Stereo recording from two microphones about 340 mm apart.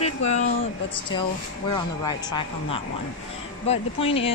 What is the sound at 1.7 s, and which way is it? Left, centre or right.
Speech, centre.